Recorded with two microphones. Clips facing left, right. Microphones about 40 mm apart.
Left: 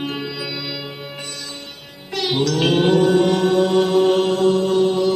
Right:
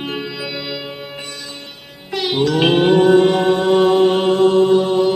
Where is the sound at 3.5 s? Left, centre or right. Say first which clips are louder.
Right 2 dB; right.